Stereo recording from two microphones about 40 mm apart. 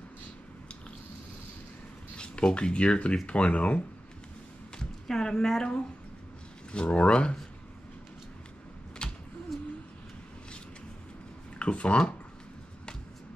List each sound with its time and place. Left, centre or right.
2.1 s speech: left
4.7 s speech: centre
6.7 s speech: left
9.0 s a sound: left
9.5 s a sound: centre
11.5 s speech: left